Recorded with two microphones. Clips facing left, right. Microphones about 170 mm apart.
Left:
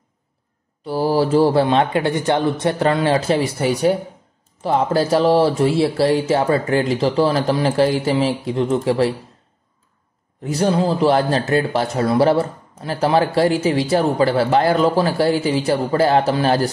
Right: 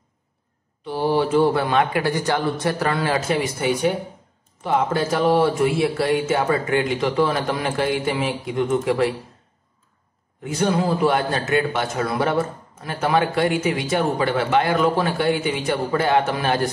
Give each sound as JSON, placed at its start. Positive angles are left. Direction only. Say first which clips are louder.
{"t": 0.8, "sound": "a man's voice", "louder": "left 3 dB", "side_deg": 35}
{"t": 10.4, "sound": "a man's voice", "louder": "left 3 dB", "side_deg": 35}